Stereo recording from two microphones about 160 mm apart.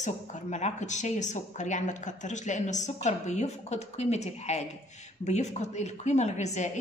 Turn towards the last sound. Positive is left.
turn(degrees=45)  # may be behind; listen again after turning